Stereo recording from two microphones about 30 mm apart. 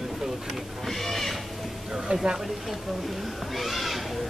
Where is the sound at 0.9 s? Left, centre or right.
Centre.